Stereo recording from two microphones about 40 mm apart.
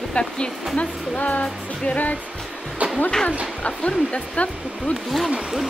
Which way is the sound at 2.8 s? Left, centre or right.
Right.